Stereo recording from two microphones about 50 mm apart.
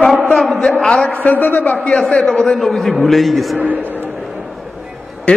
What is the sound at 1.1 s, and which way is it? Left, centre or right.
Speech, left.